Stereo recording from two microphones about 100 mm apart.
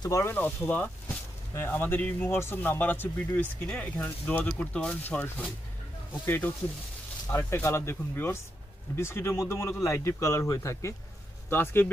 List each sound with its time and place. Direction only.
0.2 s speech: 20° left (ahead or behind)